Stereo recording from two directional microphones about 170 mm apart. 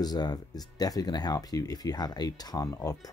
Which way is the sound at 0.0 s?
25° left (ahead or behind).